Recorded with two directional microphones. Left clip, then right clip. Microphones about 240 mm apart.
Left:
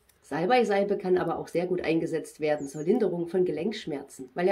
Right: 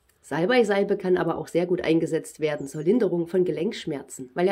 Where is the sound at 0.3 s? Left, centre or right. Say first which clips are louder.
Right 2 dB; right.